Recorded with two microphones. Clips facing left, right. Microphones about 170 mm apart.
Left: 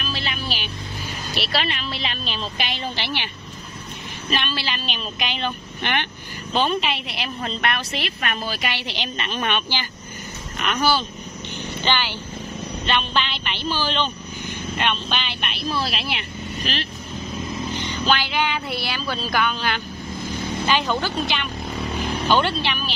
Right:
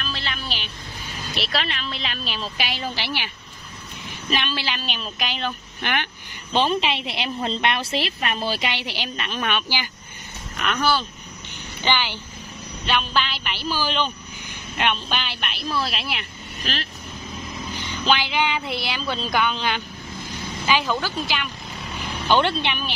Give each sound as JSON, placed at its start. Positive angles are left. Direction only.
{"t": 0.0, "sound": "vehicle", "side_deg": 15}
{"t": 1.3, "sound": "a woman's voice", "side_deg": 0}
{"t": 4.3, "sound": "a woman's voice", "side_deg": -15}
{"t": 7.0, "sound": "a woman's voice", "side_deg": -25}
{"t": 11.8, "sound": "a woman's voice", "side_deg": -15}
{"t": 18.0, "sound": "speech", "side_deg": -15}
{"t": 20.6, "sound": "a woman's voice", "side_deg": -5}
{"t": 22.3, "sound": "a woman's voice", "side_deg": -20}